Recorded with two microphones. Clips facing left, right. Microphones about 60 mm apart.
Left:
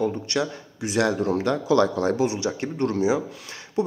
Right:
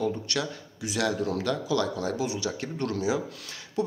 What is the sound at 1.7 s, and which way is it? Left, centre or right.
Speech, left.